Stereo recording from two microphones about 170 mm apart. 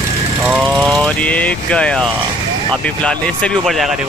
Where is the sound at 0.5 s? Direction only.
5° left (ahead or behind).